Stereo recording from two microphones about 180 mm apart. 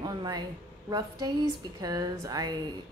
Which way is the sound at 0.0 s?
20° right (ahead or behind).